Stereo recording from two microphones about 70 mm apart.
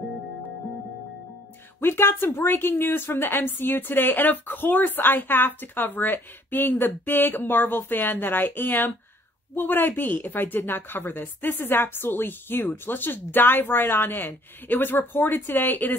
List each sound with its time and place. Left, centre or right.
1.8 s a woman's voice: left